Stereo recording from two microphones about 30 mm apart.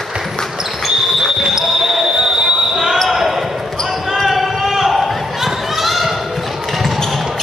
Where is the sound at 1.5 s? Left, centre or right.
Centre.